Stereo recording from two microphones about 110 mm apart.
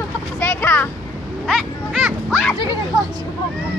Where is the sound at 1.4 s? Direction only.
Centre (ahead or behind).